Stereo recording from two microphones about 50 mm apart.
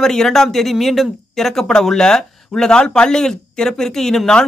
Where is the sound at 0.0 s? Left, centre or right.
Centre.